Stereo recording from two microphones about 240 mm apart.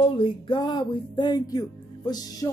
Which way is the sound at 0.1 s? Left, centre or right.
Left.